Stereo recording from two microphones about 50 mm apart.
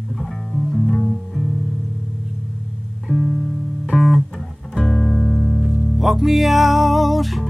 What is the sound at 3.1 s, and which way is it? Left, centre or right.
Music, left.